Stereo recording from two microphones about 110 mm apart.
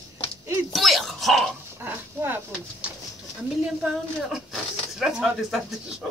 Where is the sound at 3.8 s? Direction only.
5° right (ahead or behind).